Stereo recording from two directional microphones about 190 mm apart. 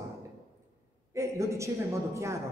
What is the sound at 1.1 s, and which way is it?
A man's voice, 15° right (ahead or behind).